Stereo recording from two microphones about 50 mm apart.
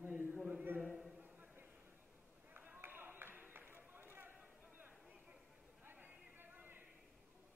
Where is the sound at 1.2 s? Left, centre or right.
Right.